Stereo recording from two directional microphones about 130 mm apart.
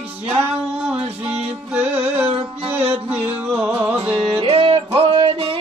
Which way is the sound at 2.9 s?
15° right (ahead or behind).